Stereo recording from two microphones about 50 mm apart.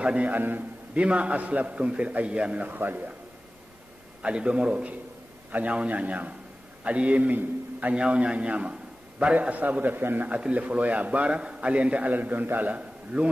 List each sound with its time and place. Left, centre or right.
0.0 s a man's voice: right
0.4 s a man's voice: right
0.9 s a man's voice: right
2.7 s a man's voice: right
4.2 s a man's voice: right
10.3 s a man's voice: right